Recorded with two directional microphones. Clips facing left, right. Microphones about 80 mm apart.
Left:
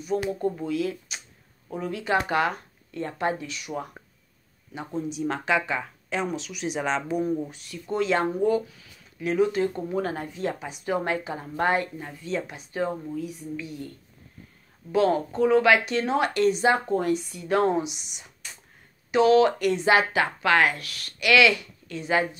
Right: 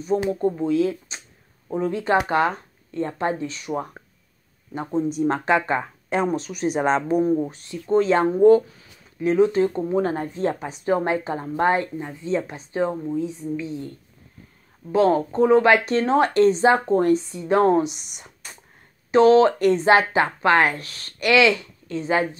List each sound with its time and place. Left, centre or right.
0.2 s speech: right
10.1 s speech: right
17.7 s speech: right
19.1 s speech: right